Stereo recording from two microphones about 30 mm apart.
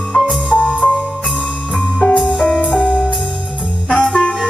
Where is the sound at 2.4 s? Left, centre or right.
Left.